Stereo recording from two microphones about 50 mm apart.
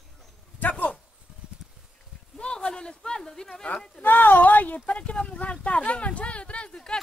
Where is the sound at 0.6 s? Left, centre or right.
Left.